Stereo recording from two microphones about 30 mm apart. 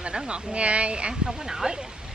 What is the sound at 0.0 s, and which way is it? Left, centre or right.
Speech, right.